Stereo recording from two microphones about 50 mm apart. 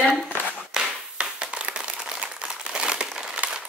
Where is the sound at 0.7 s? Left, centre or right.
Centre.